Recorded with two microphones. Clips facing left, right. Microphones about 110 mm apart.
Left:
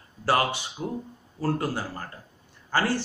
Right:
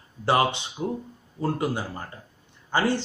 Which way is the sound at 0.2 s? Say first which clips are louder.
Right 2 dB; 20° right (ahead or behind).